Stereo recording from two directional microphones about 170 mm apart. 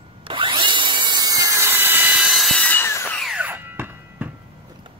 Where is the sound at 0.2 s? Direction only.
30° right (ahead or behind); by 3.2 s 15° left (ahead or behind).